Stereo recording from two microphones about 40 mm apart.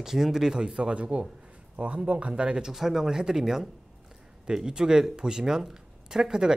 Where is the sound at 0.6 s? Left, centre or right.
Right.